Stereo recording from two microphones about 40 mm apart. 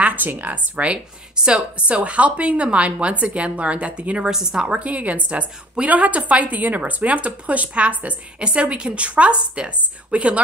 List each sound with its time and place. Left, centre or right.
0.0 s a sound: right
0.3 s speech: right
1.3 s a woman's voice: right
4.3 s a woman's voice: centre
4.6 s a woman's voice: right
8.5 s a woman's voice: right